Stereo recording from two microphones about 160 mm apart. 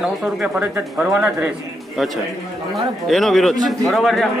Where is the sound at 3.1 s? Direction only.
Centre (ahead or behind).